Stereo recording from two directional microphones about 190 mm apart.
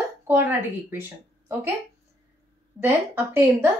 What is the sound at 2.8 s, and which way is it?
Speech, 10° right (ahead or behind).